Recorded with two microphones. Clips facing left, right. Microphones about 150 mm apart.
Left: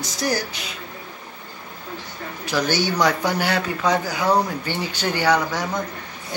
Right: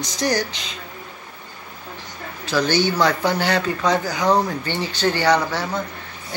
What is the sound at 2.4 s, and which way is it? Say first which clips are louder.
A man's voice: right 3 dB; 10° left (ahead or behind).